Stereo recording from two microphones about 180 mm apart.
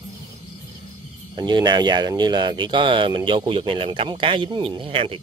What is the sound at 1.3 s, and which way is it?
Speech, 25° right (ahead or behind).